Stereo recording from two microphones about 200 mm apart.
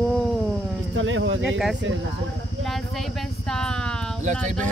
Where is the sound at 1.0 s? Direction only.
75° right (ahead or behind).